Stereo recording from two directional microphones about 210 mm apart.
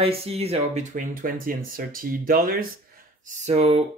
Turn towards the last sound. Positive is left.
turn(degrees=-30)  # may be behind; listen again after turning